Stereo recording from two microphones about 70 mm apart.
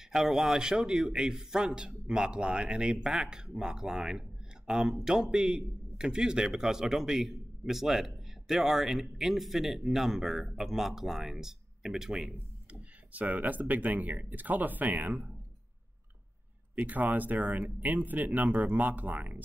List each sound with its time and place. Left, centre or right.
0.1 s a man's voice: centre
13.1 s speech: right
16.8 s speech: right